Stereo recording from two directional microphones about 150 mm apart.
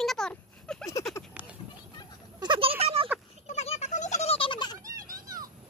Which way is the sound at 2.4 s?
35° right (ahead or behind).